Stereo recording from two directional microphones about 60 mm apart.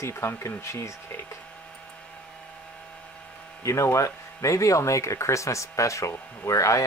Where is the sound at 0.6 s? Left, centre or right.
Left.